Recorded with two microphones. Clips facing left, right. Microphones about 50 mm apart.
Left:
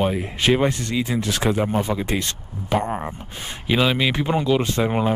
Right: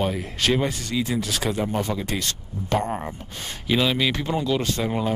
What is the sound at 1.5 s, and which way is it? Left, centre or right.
Speech, centre.